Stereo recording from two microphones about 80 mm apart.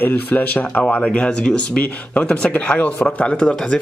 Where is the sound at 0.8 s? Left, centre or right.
Centre.